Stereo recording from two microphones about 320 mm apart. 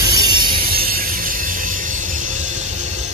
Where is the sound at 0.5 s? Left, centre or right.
Right.